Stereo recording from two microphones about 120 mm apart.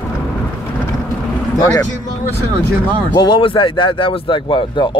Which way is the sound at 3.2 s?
45° left (ahead or behind).